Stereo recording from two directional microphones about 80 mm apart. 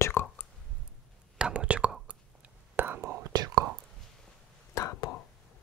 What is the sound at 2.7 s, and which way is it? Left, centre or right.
Whispering, right.